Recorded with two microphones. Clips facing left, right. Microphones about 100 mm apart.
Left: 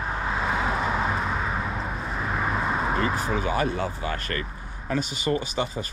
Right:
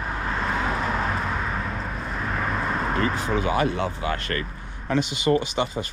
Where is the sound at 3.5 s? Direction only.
35° left (ahead or behind).